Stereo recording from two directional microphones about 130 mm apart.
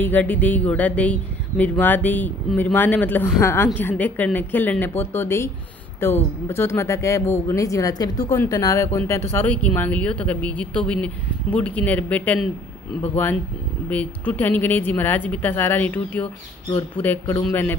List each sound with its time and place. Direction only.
0.0 s speech: 15° left (ahead or behind)